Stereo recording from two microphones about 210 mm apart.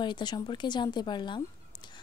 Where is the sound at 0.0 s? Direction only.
20° left (ahead or behind).